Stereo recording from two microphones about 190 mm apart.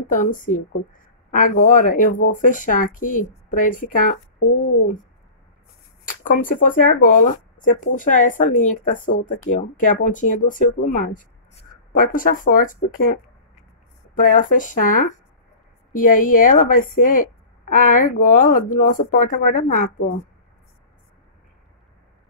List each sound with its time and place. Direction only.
0.1 s speech: 45° left (ahead or behind)
6.0 s speech: 45° left (ahead or behind)